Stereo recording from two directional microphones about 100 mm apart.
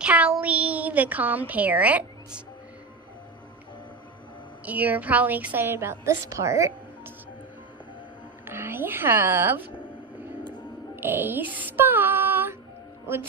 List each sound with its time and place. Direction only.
0.0 s a sound: 10° right (ahead or behind)
1.5 s a woman's voice: 15° right (ahead or behind)
4.6 s a woman's voice: 15° right (ahead or behind)
8.5 s a woman's voice: 20° right (ahead or behind)
11.0 s music: 20° right (ahead or behind)
13.0 s speech: 25° right (ahead or behind)